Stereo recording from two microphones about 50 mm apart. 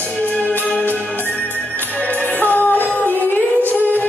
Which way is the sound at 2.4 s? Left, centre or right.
Left.